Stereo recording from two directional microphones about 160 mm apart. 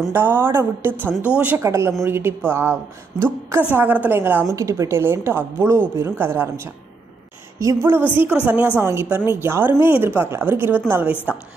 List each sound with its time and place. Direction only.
0.1 s a woman's voice: 15° right (ahead or behind)